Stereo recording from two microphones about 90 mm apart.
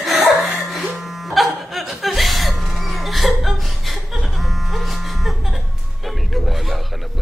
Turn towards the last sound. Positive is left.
turn(degrees=0)  # may be behind; listen again after turning